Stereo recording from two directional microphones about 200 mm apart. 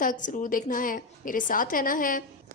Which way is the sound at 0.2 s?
40° left (ahead or behind).